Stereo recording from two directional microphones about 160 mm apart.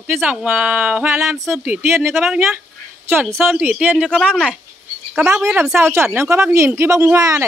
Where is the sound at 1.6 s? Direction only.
10° right (ahead or behind).